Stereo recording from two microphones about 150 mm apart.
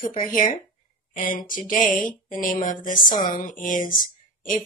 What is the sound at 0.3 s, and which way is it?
Speech, 65° left (ahead or behind).